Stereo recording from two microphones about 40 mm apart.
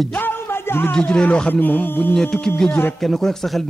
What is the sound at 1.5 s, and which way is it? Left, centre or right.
Music, left.